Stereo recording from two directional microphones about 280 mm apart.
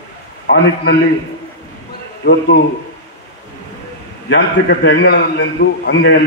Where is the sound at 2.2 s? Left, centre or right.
Left.